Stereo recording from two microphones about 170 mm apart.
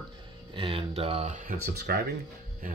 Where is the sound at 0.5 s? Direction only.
30° right (ahead or behind); by 2.1 s 75° right (ahead or behind).